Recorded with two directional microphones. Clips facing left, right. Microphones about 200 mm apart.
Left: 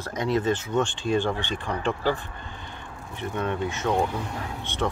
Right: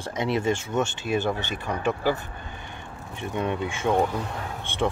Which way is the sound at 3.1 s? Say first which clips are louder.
Right 1 dB; 15° right (ahead or behind).